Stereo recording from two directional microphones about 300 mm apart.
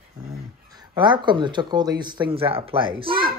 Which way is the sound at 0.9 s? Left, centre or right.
Centre.